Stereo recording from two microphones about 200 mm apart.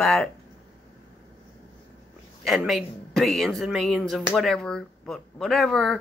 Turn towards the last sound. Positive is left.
turn(degrees=0)  # may be behind; listen again after turning